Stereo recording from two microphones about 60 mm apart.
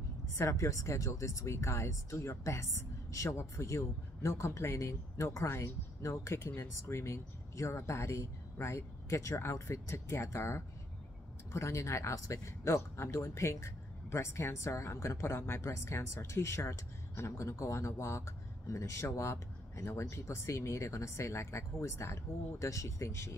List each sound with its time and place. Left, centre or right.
0.3 s speech: left